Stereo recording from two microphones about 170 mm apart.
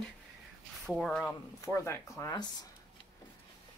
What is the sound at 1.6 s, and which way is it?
Speech, 15° left (ahead or behind).